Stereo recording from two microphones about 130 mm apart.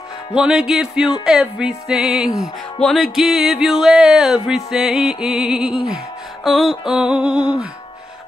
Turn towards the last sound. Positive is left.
turn(degrees=-10)  # may be behind; listen again after turning